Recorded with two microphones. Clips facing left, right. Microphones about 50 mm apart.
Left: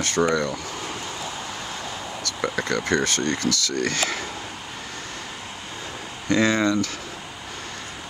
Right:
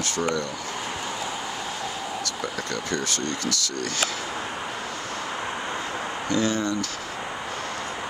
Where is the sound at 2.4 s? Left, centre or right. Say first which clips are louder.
Left 9 dB; left.